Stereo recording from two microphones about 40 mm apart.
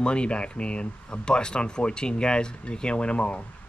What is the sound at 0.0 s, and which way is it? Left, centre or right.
Speech, left.